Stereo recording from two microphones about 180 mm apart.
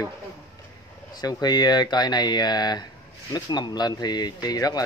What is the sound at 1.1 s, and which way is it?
Speech, 20° left (ahead or behind).